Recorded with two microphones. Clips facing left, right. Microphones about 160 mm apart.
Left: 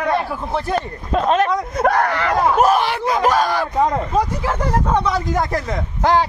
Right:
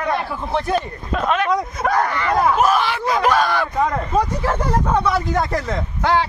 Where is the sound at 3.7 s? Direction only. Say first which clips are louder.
Left 2 dB; 20° left (ahead or behind).